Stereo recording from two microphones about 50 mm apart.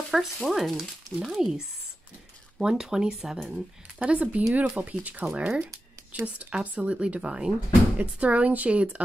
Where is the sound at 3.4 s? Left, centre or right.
Centre.